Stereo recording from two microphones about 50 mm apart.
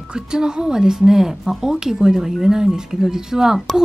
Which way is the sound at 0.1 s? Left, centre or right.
Centre.